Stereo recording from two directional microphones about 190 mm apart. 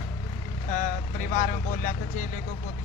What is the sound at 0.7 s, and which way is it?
Speech, 40° left (ahead or behind).